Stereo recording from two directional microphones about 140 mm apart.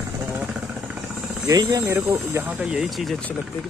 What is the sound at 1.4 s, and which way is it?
Speech, 25° right (ahead or behind).